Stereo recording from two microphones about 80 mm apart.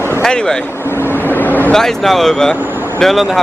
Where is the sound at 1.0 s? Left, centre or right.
Left.